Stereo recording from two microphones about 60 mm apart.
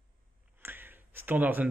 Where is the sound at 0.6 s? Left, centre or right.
Right.